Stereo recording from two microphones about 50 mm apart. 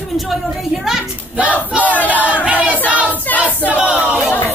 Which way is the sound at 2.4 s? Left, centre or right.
Right.